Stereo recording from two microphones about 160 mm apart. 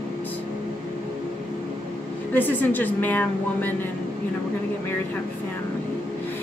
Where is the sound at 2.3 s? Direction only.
10° left (ahead or behind).